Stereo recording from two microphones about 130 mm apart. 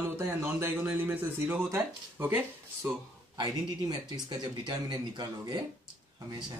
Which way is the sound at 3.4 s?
35° right (ahead or behind).